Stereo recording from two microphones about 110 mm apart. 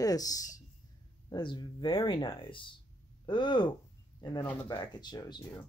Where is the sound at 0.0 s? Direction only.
35° left (ahead or behind).